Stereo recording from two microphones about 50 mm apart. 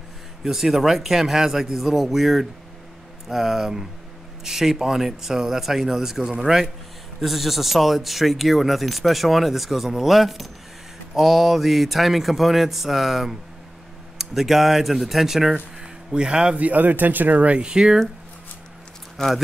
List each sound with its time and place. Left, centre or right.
0.4 s speech: centre
16.1 s speech: centre
16.5 s speech: right
17.6 s speech: centre
19.1 s speech: centre